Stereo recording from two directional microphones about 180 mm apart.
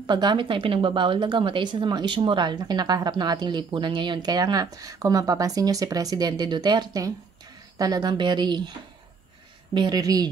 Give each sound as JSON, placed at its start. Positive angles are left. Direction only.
{"t": 0.0, "sound": "a woman's voice", "side_deg": -25}
{"t": 9.8, "sound": "a woman's voice", "side_deg": -20}